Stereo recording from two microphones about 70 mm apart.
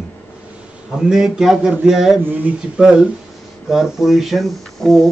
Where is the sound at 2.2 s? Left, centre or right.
Right.